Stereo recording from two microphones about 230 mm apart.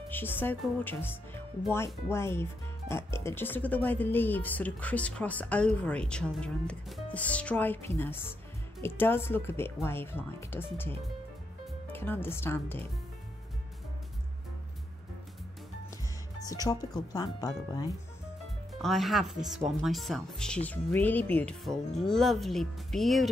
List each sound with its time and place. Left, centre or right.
0.1 s speech: centre
16.4 s speech: centre
18.7 s speech: centre